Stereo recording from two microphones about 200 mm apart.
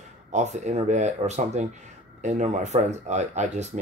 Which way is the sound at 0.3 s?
35° right (ahead or behind).